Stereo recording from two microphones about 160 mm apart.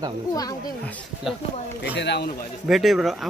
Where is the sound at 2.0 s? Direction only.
90° left.